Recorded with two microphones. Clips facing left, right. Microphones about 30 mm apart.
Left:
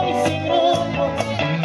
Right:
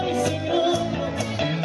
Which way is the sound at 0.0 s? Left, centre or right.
Left.